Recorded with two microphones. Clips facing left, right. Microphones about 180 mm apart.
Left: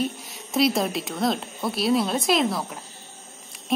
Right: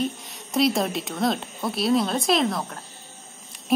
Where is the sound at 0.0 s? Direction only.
Centre (ahead or behind).